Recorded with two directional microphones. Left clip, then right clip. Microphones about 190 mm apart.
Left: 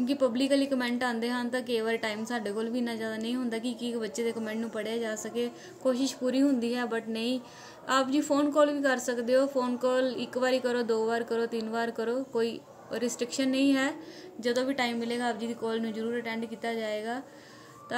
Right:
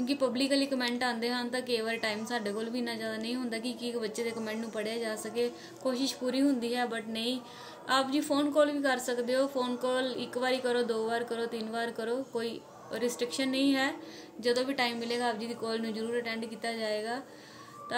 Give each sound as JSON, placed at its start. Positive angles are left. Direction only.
{"t": 0.0, "sound": "a woman's voice", "side_deg": 35}